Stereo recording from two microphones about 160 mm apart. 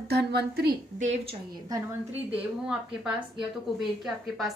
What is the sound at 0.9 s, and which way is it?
Speech, 45° right (ahead or behind).